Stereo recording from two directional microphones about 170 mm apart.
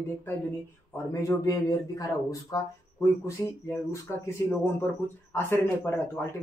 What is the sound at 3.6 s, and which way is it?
A man's voice, 15° left (ahead or behind).